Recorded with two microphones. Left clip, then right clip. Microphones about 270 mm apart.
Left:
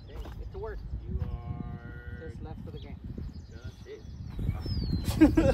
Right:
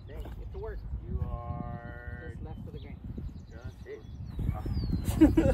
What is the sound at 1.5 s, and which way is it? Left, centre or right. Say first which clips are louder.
Music: right 3 dB; centre.